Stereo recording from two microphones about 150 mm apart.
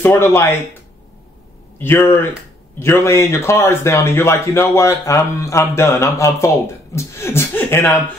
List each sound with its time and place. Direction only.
0.0 s a man's voice: 15° left (ahead or behind)
1.8 s a man's voice: 15° left (ahead or behind)